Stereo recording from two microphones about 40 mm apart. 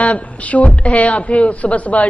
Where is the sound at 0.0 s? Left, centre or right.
Left.